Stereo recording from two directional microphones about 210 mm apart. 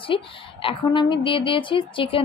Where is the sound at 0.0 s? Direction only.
25° left (ahead or behind).